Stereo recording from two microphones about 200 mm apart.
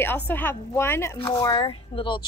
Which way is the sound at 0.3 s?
10° left (ahead or behind).